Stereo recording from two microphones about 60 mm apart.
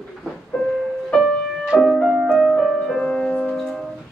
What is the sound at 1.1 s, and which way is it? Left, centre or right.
Music, centre.